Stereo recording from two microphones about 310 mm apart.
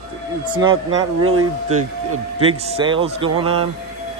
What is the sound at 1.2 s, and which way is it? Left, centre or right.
Speech, right.